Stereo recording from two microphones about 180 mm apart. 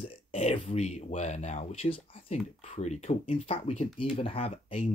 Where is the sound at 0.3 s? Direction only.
35° left (ahead or behind).